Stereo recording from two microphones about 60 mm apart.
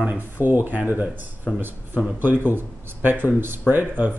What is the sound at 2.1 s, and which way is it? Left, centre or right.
Speech, right.